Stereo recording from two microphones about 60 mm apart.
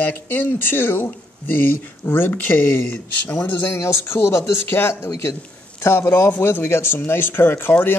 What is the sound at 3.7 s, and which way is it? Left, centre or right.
Speech, left.